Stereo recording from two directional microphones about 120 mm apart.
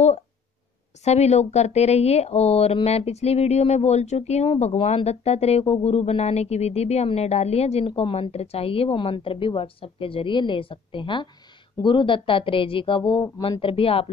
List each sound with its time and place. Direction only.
1.0 s speech: 65° left (ahead or behind); by 14.0 s 50° left (ahead or behind)